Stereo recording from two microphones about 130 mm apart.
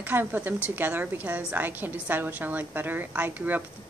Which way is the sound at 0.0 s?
15° right (ahead or behind).